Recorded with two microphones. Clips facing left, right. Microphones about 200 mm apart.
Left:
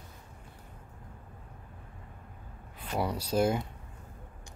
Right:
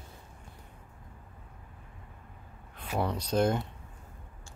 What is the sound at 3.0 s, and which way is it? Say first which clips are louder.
Speech: even; 10° left (ahead or behind).